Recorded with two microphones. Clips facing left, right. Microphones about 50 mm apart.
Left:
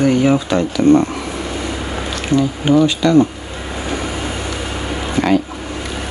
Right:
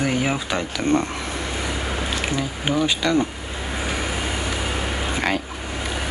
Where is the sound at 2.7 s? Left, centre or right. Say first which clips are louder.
Left 10 dB; centre.